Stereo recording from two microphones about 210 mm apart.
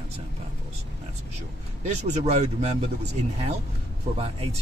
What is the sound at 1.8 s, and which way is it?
Speech, 35° right (ahead or behind).